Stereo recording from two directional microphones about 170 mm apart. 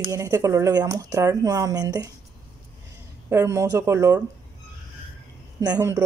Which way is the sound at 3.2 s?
15° right (ahead or behind).